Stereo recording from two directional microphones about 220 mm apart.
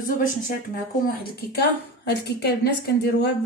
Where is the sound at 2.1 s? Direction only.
50° left (ahead or behind).